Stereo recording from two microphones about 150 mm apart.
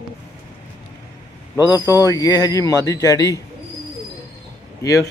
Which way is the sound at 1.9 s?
25° left (ahead or behind).